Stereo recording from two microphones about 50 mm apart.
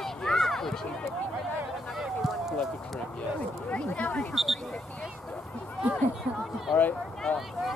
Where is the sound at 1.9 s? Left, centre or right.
Centre.